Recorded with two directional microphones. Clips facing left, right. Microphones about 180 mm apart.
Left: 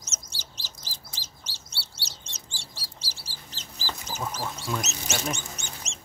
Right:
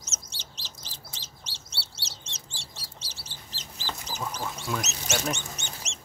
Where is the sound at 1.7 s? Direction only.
25° right (ahead or behind).